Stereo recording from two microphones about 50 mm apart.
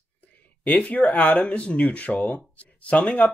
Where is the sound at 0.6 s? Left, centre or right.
Left.